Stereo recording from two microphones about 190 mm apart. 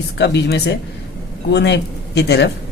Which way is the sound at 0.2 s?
65° left (ahead or behind).